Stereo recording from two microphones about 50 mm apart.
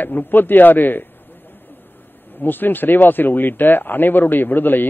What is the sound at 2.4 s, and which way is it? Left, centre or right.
A man's voice, left.